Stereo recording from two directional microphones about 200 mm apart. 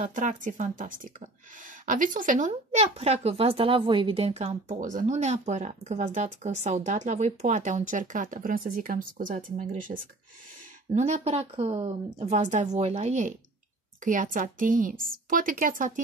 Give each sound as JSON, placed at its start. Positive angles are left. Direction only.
{"t": 0.0, "sound": "speech", "side_deg": -40}